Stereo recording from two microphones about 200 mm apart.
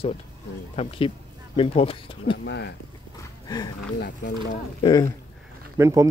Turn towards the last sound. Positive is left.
turn(degrees=-15)  # may be behind; listen again after turning